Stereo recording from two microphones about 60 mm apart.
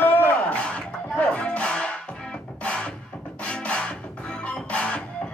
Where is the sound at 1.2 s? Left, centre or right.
Centre.